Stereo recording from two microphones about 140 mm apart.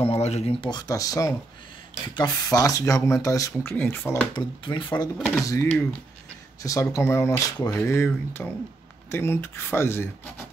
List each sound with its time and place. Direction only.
0.0 s speech: 50° left (ahead or behind)
0.7 s speech: 25° left (ahead or behind)
4.4 s speech: 35° left (ahead or behind)
5.5 s speech: 20° left (ahead or behind)